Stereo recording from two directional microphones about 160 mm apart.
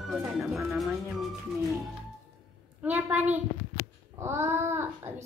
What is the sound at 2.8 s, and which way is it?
A child's voice, 10° right (ahead or behind).